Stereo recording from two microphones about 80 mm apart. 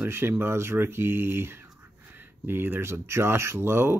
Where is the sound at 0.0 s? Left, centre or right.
Right.